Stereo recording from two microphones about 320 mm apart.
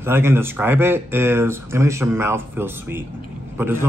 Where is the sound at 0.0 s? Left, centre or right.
Centre.